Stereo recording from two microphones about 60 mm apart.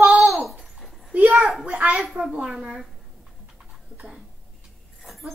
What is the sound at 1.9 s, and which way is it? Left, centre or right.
Speech, centre.